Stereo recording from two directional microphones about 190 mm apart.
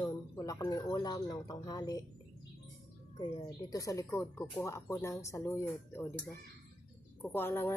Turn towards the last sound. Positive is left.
turn(degrees=10)  # may be behind; listen again after turning